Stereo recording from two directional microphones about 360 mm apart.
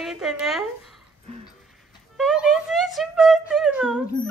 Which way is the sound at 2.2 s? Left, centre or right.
Centre.